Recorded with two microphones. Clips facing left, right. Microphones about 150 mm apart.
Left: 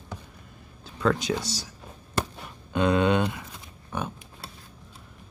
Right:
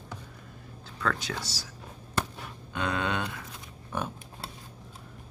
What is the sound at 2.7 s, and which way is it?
Speech, 20° left (ahead or behind).